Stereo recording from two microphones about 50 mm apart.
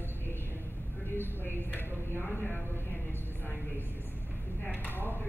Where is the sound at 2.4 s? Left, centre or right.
Left.